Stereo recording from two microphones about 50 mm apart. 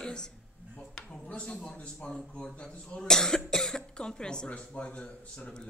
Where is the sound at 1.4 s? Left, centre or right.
Centre.